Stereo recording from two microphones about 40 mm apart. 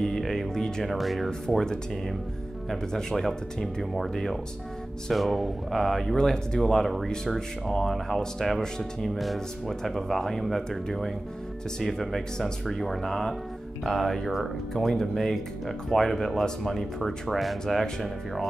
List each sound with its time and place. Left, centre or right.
0.0 s music: centre
0.8 s speech: centre
2.9 s speech: centre
6.1 s speech: centre
6.6 s speech: centre